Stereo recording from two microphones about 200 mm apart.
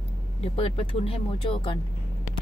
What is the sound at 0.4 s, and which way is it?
Speech, 30° left (ahead or behind).